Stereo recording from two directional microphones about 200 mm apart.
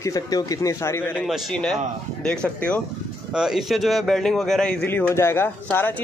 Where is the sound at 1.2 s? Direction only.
Centre (ahead or behind).